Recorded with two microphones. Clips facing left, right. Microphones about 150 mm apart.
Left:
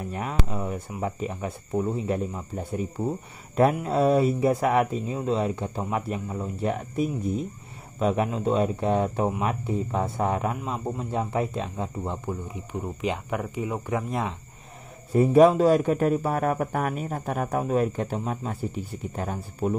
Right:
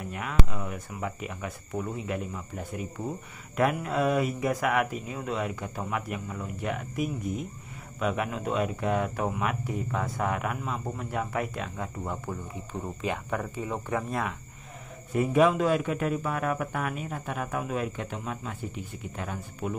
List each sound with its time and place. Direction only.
0.1 s a man's voice: 30° left (ahead or behind); by 14.2 s 10° left (ahead or behind)
15.1 s a man's voice: 35° left (ahead or behind)